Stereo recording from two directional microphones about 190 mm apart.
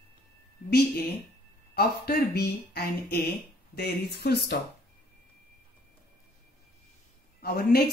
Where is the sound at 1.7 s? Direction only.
55° left (ahead or behind).